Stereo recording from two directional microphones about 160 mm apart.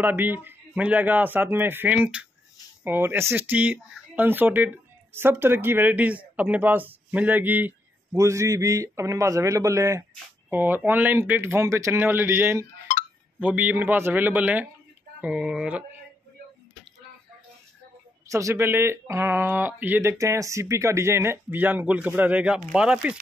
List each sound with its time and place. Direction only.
0.0 s speech: 15° right (ahead or behind)
12.9 s a sound: 50° left (ahead or behind)
13.4 s speech: 10° right (ahead or behind)
18.3 s speech: 15° right (ahead or behind)